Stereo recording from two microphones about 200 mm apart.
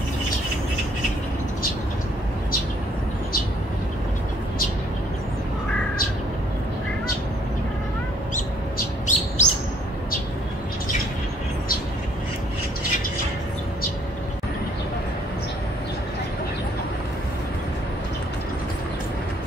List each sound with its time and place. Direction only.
8.4 s bird: 40° left (ahead or behind)